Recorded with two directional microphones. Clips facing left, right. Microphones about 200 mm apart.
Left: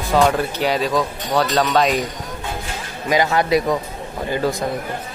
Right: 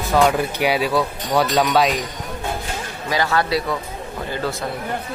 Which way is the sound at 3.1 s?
20° left (ahead or behind).